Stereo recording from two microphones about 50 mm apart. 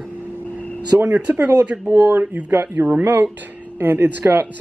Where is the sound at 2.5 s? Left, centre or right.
Right.